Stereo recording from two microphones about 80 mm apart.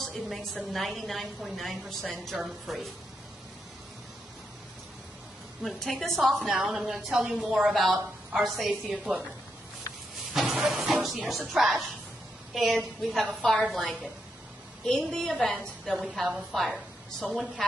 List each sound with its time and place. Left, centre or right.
0.0 s a woman's voice: centre
5.6 s a woman's voice: centre
7.7 s a woman's voice: centre
10.3 s a woman's voice: centre